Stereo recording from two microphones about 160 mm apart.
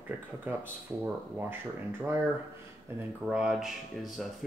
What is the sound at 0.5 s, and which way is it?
Speech, 10° right (ahead or behind).